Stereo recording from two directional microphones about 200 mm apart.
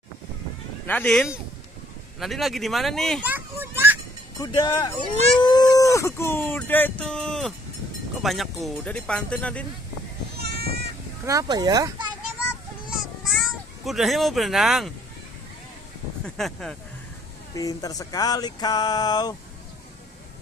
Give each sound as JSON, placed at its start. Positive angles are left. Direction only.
{"t": 0.8, "sound": "speech", "side_deg": 5}
{"t": 3.3, "sound": "children playing", "side_deg": -10}
{"t": 4.4, "sound": "speech", "side_deg": 20}
{"t": 5.4, "sound": "a sound", "side_deg": 20}
{"t": 8.2, "sound": "speech", "side_deg": 0}
{"t": 10.3, "sound": "a sound", "side_deg": -50}
{"t": 11.2, "sound": "speech", "side_deg": -20}
{"t": 13.8, "sound": "speech", "side_deg": 0}
{"t": 16.3, "sound": "speech", "side_deg": 0}
{"t": 17.6, "sound": "speech", "side_deg": 20}